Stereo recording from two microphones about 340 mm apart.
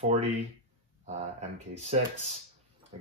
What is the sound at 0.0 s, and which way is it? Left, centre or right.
Speech, centre.